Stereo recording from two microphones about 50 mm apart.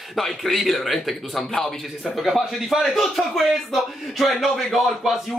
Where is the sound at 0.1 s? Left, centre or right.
Centre.